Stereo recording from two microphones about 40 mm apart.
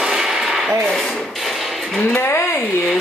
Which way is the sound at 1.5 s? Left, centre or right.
Centre.